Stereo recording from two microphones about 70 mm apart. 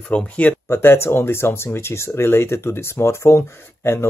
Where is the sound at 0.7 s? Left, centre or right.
Left.